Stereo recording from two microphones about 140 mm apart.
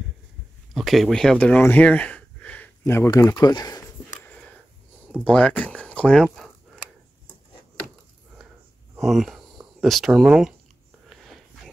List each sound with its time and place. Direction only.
0.7 s speech: centre (ahead or behind)
2.8 s speech: 20° left (ahead or behind)
4.2 s a sound: 10° left (ahead or behind)
5.2 s speech: 10° left (ahead or behind)
8.9 s speech: centre (ahead or behind)
11.1 s a sound: centre (ahead or behind)